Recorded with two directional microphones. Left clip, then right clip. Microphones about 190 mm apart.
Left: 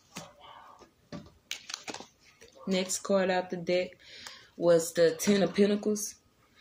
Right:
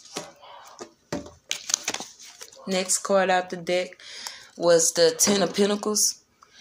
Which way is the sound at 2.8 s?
20° left (ahead or behind).